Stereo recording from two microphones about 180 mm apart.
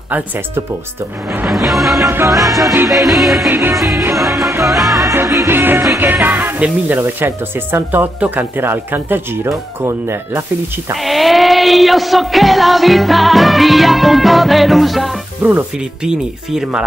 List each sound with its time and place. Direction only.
1.3 s music: 5° right (ahead or behind)
3.4 s speech: 15° right (ahead or behind)
3.7 s music: centre (ahead or behind)
5.0 s music: 15° right (ahead or behind)
5.9 s speech: 10° right (ahead or behind)
10.9 s music: centre (ahead or behind)